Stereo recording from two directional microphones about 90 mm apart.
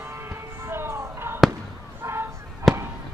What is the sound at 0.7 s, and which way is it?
Music, 30° right (ahead or behind).